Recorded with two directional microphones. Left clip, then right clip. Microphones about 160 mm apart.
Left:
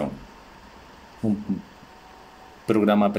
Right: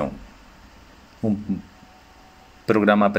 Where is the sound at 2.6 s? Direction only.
10° right (ahead or behind).